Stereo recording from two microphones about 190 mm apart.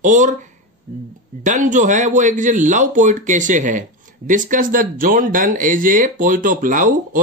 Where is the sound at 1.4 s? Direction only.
40° right (ahead or behind).